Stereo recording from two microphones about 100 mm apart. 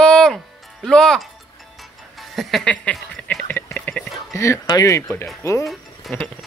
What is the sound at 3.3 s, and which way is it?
Speech, 15° left (ahead or behind).